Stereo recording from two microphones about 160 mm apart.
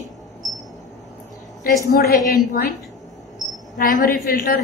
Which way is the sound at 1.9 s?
75° left (ahead or behind).